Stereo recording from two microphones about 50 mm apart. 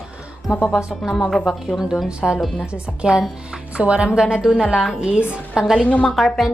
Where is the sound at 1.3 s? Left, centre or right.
Centre.